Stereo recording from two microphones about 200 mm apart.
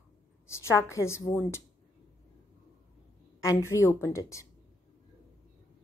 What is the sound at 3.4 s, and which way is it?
A woman's voice, 15° left (ahead or behind).